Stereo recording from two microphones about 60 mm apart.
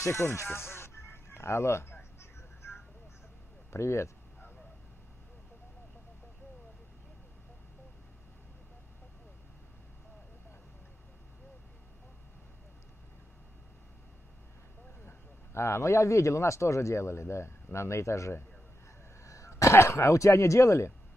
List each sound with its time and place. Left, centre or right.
0.0 s music: left
3.7 s speech: left
15.0 s speech: left